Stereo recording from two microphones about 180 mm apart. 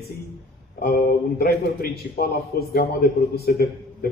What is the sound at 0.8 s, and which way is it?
A man's voice, 55° left (ahead or behind).